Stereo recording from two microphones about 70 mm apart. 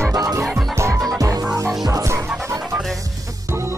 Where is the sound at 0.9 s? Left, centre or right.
Centre.